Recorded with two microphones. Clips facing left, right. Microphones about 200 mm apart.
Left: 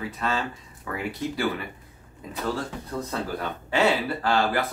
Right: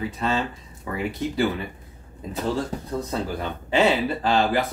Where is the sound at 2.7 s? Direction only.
40° right (ahead or behind).